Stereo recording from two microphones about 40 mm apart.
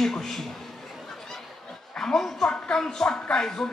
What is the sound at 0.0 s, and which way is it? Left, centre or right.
Speech, centre.